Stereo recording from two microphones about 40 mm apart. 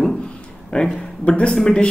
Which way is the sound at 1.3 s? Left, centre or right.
Left.